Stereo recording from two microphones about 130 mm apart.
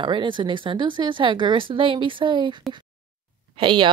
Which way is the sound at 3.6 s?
40° right (ahead or behind).